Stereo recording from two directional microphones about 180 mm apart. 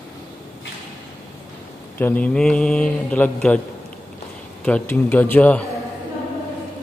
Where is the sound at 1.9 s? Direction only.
10° left (ahead or behind).